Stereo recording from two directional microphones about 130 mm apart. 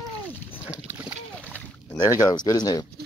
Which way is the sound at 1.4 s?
10° left (ahead or behind).